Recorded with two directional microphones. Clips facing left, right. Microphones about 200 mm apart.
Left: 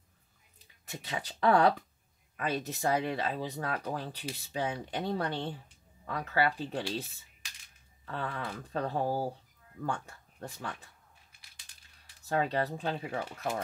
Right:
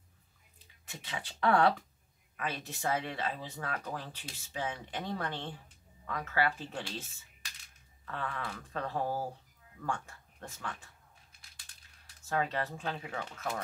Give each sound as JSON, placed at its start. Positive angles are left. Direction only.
{"t": 0.8, "sound": "speech", "side_deg": 40}
{"t": 12.3, "sound": "speech", "side_deg": 35}